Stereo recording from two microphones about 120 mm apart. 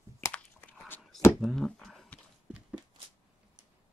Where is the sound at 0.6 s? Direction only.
15° left (ahead or behind).